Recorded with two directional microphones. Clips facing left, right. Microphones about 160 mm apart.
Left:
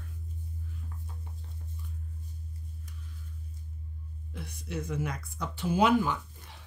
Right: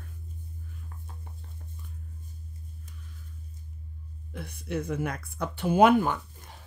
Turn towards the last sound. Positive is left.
turn(degrees=-50)  # may be behind; listen again after turning